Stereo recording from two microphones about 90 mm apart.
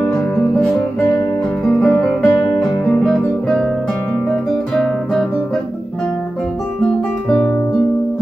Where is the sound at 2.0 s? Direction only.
15° left (ahead or behind).